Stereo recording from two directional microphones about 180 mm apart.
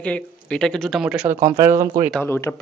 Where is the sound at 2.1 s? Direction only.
10° left (ahead or behind).